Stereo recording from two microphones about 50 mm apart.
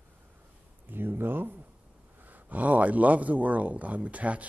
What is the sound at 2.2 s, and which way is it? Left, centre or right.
Speech, right.